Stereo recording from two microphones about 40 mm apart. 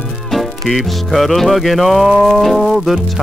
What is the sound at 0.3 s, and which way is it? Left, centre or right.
Music, centre.